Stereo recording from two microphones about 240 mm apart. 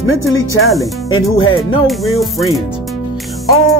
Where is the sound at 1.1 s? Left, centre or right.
Left.